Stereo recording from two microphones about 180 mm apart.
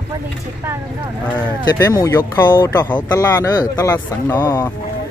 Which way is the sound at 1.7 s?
15° left (ahead or behind).